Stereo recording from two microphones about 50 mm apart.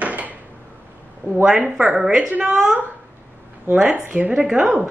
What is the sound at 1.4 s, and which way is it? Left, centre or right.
Speech, centre.